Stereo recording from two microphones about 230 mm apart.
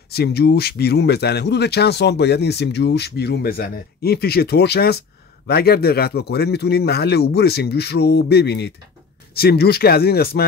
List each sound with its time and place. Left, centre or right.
0.1 s speech: left